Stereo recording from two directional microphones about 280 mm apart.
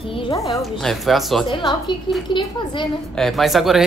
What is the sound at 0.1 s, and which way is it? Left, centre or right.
Speech, centre.